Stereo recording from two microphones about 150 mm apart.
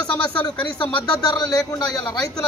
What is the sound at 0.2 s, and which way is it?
Speech, 5° left (ahead or behind).